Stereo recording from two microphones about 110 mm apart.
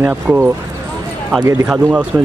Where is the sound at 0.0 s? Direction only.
15° right (ahead or behind).